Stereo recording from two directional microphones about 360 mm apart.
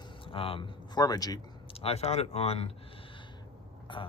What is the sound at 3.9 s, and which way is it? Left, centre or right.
Burping, centre.